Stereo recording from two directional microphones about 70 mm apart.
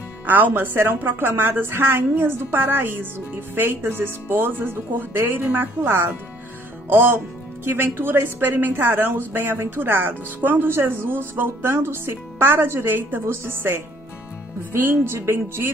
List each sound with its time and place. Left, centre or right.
0.3 s a woman's voice: right